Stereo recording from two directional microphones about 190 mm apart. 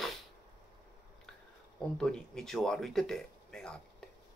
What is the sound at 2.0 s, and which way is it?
Speech, 5° left (ahead or behind).